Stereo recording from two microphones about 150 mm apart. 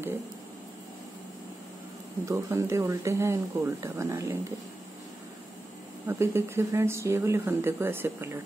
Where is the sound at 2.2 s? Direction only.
20° right (ahead or behind).